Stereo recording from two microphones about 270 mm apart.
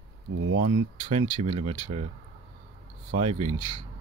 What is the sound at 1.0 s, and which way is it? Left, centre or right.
Speech, centre.